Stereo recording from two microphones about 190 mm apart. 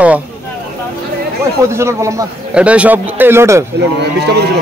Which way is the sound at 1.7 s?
15° right (ahead or behind).